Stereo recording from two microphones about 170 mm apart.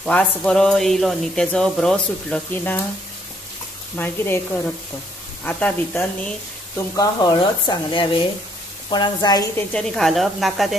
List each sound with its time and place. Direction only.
0.0 s speech: 5° left (ahead or behind)
3.9 s speech: 15° left (ahead or behind)
5.4 s speech: 10° left (ahead or behind)
7.0 s speech: 25° left (ahead or behind); by 10.8 s centre (ahead or behind)